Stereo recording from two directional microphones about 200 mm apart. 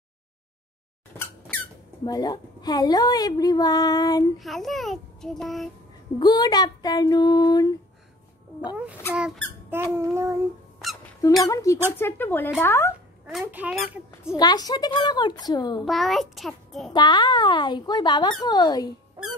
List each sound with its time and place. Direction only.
1.1 s squeak: 10° left (ahead or behind)
2.0 s a woman's voice: 20° left (ahead or behind)
4.4 s a child's voice: centre (ahead or behind)
6.1 s a woman's voice: 20° left (ahead or behind)
9.1 s a child's voice: centre (ahead or behind)
9.9 s child singing: 15° right (ahead or behind)
10.8 s squeak: centre (ahead or behind)
11.4 s a woman's voice: 15° left (ahead or behind)
13.3 s a child's voice: 5° right (ahead or behind)
14.3 s a woman's voice: 20° left (ahead or behind)
15.8 s a child's voice: centre (ahead or behind)
16.9 s a woman's voice: 20° left (ahead or behind)